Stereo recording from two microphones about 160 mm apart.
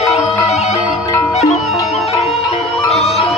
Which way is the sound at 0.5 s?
45° left (ahead or behind).